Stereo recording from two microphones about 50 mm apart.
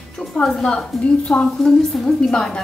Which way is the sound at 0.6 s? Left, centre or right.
Centre.